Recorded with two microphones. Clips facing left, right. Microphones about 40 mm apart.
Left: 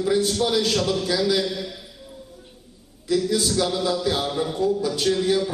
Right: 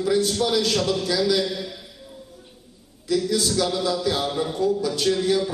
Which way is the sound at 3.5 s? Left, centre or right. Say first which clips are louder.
Even; centre.